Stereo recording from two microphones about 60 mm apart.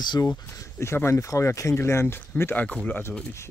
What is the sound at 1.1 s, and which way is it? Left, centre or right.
Speech, left.